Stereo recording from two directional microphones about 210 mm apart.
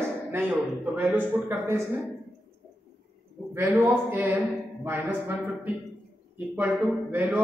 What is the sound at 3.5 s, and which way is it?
A man's voice, 10° right (ahead or behind).